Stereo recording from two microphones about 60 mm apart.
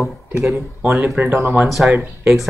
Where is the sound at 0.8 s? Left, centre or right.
Right.